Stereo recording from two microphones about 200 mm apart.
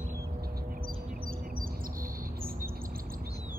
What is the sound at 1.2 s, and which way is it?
Chirp, 45° right (ahead or behind).